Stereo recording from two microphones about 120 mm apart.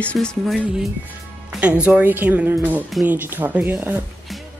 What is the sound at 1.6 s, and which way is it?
Speech, 10° right (ahead or behind).